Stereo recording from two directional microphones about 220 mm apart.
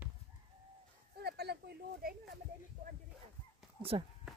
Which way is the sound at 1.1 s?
45° right (ahead or behind).